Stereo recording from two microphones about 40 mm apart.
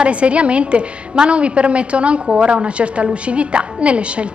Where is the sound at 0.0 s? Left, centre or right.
Right.